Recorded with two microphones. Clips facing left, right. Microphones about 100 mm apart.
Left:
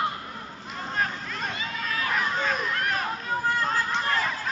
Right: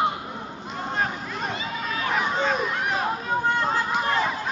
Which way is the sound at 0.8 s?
25° right (ahead or behind).